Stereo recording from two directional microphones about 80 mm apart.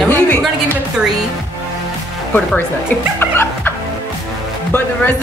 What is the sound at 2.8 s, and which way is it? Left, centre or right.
Chuckle, left.